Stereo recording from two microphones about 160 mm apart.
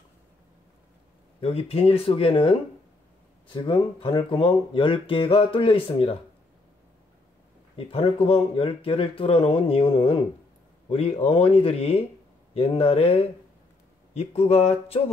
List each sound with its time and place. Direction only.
1.4 s speech: 40° left (ahead or behind)
3.5 s speech: 30° left (ahead or behind)
7.7 s speech: 35° left (ahead or behind)